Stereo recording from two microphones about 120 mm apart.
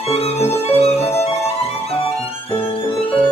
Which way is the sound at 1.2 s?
60° left (ahead or behind).